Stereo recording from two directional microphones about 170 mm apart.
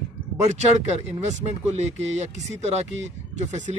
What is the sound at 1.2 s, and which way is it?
Speech, 40° right (ahead or behind).